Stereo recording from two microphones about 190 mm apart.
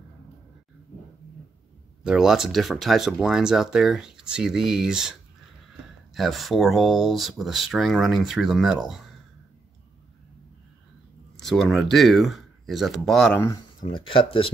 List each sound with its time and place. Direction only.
2.0 s speech: 5° right (ahead or behind)
6.1 s speech: centre (ahead or behind)
11.3 s speech: centre (ahead or behind)
13.7 s speech: 25° left (ahead or behind)